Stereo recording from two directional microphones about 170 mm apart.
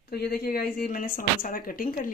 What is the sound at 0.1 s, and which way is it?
A woman's voice, 65° left (ahead or behind).